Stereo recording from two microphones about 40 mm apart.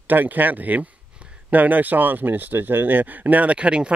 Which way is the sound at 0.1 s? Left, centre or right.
Right.